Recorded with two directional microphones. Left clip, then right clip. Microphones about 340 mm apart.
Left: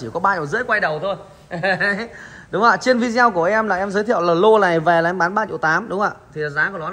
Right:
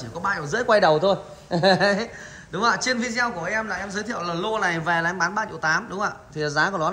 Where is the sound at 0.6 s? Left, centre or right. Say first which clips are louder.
Right 5 dB; centre.